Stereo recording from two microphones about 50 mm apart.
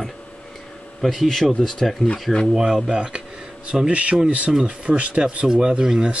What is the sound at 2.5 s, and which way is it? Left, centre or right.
Speech, centre.